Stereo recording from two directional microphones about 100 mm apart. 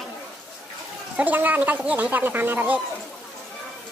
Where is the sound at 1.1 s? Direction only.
15° right (ahead or behind).